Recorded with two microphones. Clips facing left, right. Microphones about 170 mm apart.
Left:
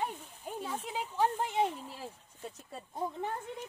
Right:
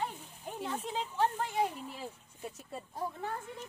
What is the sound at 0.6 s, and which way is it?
Speech, centre (ahead or behind).